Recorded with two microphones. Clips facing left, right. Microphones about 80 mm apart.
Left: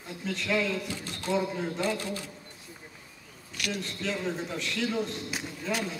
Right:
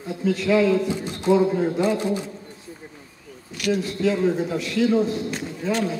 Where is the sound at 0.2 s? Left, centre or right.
Centre.